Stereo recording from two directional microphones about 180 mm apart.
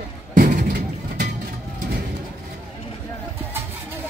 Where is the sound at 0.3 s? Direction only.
45° right (ahead or behind).